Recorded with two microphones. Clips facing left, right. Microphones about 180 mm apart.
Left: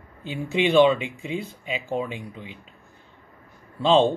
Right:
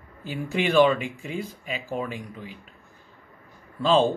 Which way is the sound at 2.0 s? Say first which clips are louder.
Left 1 dB; 20° left (ahead or behind).